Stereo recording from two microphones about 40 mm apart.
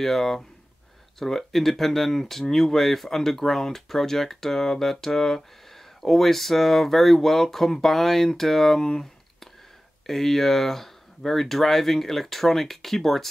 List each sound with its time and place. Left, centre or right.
0.0 s speech: centre